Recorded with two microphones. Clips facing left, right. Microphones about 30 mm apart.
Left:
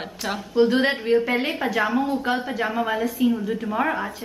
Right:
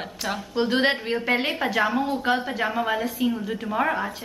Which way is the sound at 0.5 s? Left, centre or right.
Centre.